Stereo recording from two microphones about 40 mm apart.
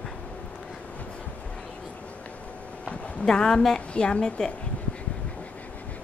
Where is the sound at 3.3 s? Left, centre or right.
Centre.